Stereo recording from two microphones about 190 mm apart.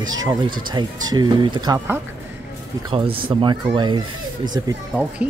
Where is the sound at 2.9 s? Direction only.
25° right (ahead or behind).